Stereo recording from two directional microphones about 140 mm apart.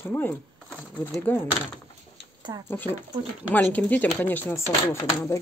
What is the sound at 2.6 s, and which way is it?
Speech, 15° left (ahead or behind).